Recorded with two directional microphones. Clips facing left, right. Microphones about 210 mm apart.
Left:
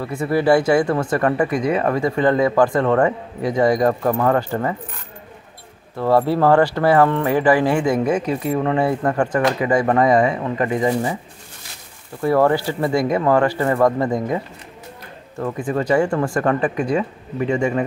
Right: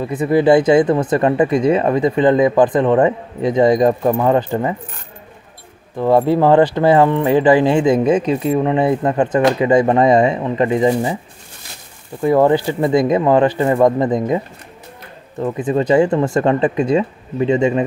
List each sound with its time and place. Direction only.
0.0 s speech: 20° right (ahead or behind)
5.9 s speech: 20° right (ahead or behind)
12.2 s speech: 20° right (ahead or behind)